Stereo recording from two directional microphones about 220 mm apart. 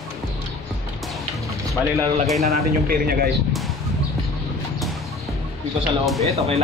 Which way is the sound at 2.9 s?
45° right (ahead or behind).